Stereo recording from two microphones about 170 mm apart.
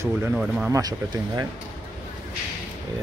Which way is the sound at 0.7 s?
20° right (ahead or behind).